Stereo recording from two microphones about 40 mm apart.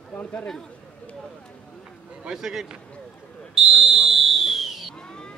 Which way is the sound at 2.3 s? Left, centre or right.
Centre.